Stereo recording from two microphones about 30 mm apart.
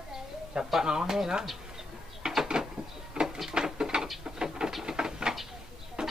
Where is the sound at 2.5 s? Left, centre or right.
Right.